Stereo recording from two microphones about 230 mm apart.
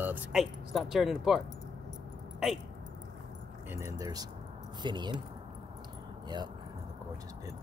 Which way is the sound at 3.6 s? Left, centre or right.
Centre.